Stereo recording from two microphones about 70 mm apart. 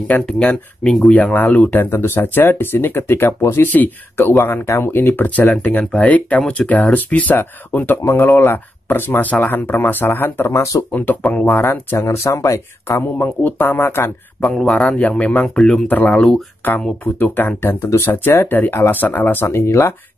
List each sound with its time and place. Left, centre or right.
0.3 s speech: centre; by 8.1 s left
8.1 s speech: left
10.6 s speech: left
10.9 s speech: left
12.8 s speech: left
14.5 s speech: centre
14.9 s speech: left
15.9 s speech: left
16.2 s speech: centre
17.0 s speech: left